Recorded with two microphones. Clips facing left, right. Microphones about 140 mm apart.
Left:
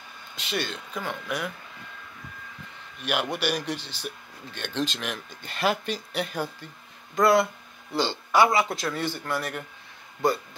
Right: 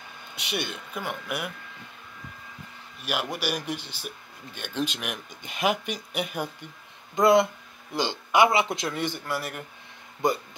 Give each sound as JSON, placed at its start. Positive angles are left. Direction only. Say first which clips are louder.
{"t": 0.4, "sound": "speech", "louder": "left 1 dB", "side_deg": -15}
{"t": 3.0, "sound": "speech", "louder": "left 3 dB", "side_deg": -5}